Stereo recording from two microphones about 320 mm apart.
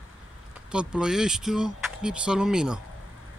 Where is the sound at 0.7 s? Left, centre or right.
Centre.